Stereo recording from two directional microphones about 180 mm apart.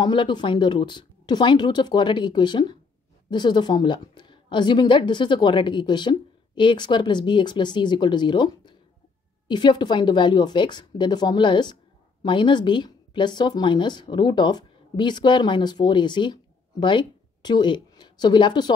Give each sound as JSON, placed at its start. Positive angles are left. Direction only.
{"t": 0.0, "sound": "a woman's voice", "side_deg": 25}